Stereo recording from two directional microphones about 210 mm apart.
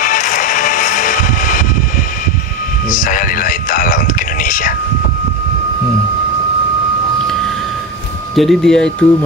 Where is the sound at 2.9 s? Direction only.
40° left (ahead or behind).